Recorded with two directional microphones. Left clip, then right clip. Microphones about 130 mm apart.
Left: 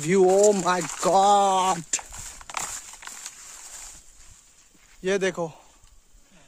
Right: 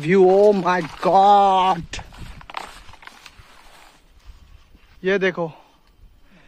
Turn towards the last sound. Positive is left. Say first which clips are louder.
# right 5 dB
turn(degrees=15)  # may be behind; listen again after turning